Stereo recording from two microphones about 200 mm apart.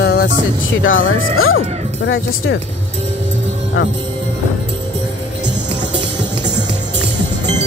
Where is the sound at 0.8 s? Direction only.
80° left.